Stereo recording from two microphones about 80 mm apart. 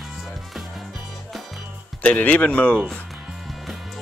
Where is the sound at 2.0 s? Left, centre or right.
Centre.